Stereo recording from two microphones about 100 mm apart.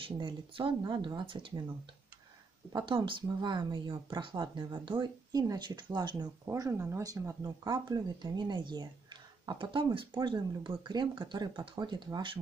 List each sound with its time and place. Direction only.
0.2 s speech: 55° right (ahead or behind)
2.7 s speech: 50° right (ahead or behind)
6.4 s speech: 30° right (ahead or behind)
7.6 s speech: 45° right (ahead or behind)